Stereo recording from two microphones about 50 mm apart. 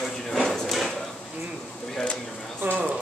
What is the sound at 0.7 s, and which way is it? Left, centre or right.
Speech, centre.